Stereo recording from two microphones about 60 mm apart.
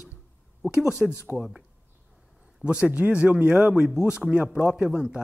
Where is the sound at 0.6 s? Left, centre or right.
Centre.